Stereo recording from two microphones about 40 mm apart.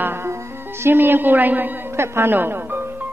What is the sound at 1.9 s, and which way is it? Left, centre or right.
Speech, right.